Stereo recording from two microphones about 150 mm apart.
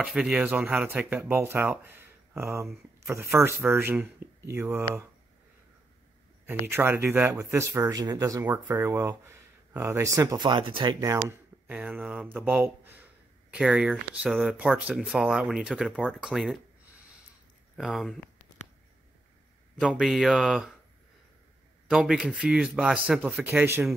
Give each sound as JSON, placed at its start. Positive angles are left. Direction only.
{"t": 0.0, "sound": "speech", "side_deg": -5}
{"t": 6.4, "sound": "speech", "side_deg": -15}
{"t": 17.7, "sound": "speech", "side_deg": 0}
{"t": 19.8, "sound": "speech", "side_deg": 0}
{"t": 21.8, "sound": "speech", "side_deg": -5}